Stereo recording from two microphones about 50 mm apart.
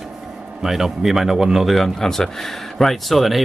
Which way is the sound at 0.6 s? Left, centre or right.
Centre.